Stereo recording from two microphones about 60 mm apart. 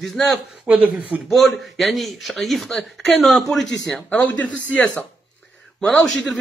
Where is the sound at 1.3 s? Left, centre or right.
Centre.